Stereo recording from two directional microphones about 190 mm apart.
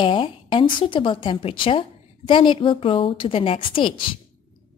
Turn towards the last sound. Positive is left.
turn(degrees=25)  # may be behind; listen again after turning